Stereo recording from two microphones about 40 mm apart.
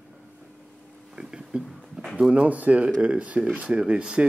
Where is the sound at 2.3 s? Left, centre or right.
Right.